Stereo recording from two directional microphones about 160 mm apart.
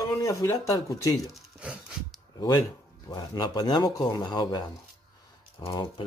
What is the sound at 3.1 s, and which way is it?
Speech, 25° left (ahead or behind).